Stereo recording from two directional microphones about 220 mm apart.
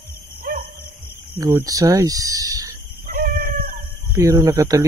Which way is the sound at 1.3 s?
15° right (ahead or behind).